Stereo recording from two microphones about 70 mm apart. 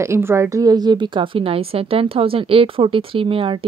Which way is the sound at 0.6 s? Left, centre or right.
Right.